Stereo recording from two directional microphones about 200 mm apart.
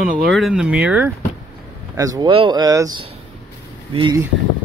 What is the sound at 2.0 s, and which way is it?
Speech, 20° right (ahead or behind).